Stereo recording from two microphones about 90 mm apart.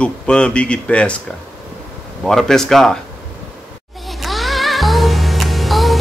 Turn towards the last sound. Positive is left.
turn(degrees=0)  # may be behind; listen again after turning